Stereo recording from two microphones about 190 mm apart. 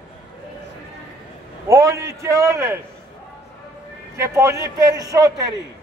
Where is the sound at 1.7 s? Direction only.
15° right (ahead or behind).